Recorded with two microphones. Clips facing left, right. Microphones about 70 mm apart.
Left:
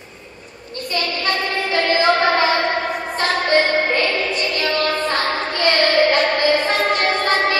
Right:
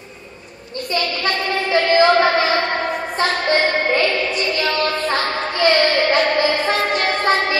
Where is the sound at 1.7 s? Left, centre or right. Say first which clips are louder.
Right 4 dB; right.